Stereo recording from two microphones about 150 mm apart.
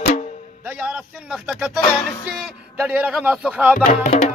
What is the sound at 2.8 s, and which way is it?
Speech, 10° right (ahead or behind).